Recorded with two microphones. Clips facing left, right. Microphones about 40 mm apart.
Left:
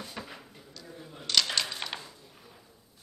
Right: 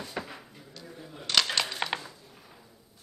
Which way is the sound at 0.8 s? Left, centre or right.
Centre.